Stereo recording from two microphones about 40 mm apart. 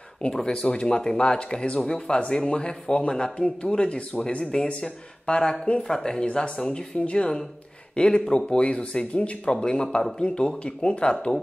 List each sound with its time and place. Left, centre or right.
0.3 s speech: centre
4.6 s speech: left
5.9 s speech: centre